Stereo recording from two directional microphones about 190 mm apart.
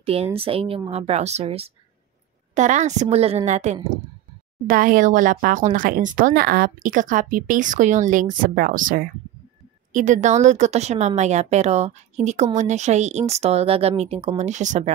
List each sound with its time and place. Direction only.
0.0 s a woman's voice: 30° right (ahead or behind)